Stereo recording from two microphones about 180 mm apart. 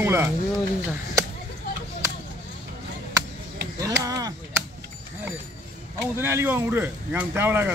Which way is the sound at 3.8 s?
20° right (ahead or behind).